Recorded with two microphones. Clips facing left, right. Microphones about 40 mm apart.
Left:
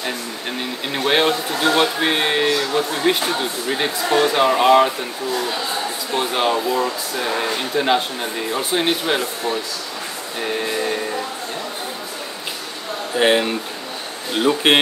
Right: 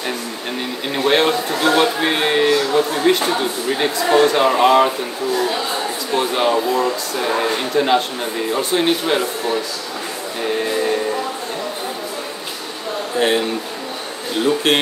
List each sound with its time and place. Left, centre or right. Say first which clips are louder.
0.9 s speech: right 2 dB; centre
6.1 s speech: right 2 dB; centre
6.5 s speech: right 2 dB; centre
10.4 s a sound: right 3 dB; centre
13.2 s speech: left 1 dB; centre
14.7 s speech: left 3 dB; left